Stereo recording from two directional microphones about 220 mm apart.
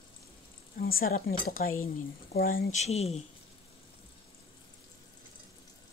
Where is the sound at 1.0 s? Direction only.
45° left (ahead or behind).